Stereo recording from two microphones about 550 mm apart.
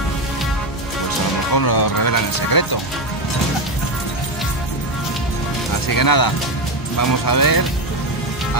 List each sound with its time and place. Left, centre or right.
1.5 s speech: left
5.9 s speech: left